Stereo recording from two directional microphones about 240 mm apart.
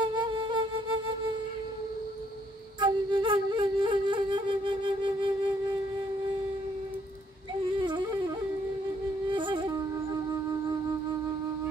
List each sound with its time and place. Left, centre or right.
0.0 s music: centre
2.8 s flute: centre
9.3 s music: centre